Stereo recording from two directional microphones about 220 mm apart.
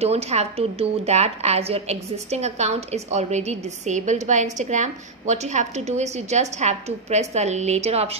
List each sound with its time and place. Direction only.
0.0 s a woman's voice: 30° right (ahead or behind)